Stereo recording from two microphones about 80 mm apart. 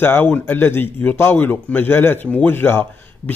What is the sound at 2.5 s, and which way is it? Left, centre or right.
Speech, left.